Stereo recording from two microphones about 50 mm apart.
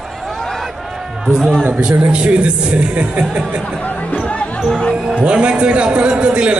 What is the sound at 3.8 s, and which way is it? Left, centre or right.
Music, left.